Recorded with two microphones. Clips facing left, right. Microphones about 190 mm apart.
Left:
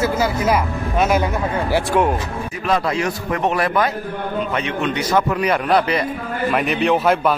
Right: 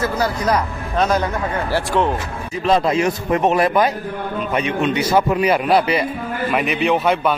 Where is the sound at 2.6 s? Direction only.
25° right (ahead or behind).